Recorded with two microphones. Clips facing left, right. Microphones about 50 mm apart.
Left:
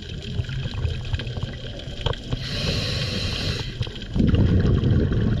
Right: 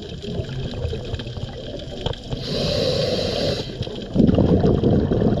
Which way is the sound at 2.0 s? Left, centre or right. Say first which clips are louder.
Left 1 dB; left.